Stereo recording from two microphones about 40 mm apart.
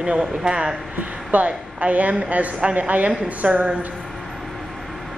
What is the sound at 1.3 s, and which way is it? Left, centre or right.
Speech, right.